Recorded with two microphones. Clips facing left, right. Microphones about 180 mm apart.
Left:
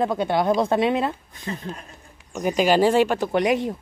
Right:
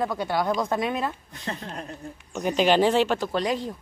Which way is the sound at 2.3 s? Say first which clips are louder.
Left 2 dB; 10° left (ahead or behind).